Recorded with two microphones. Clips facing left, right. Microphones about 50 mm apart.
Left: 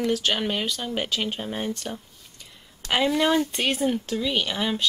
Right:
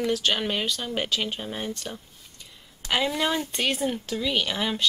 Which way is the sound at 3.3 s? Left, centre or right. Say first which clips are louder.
Left 4 dB; left.